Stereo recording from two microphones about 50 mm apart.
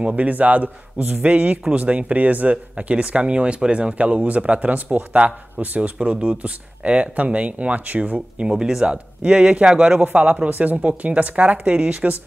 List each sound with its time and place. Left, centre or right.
0.0 s a man's voice: right
8.5 s speech: centre